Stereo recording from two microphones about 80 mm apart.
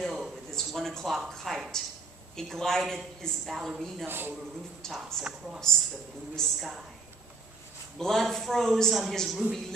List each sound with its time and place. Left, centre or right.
0.0 s a sound: centre
0.5 s a woman's voice: centre
4.0 s a man's voice: right
4.8 s a woman's voice: centre
8.0 s a woman's voice: centre